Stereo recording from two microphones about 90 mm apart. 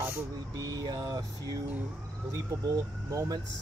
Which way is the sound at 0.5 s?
40° right (ahead or behind).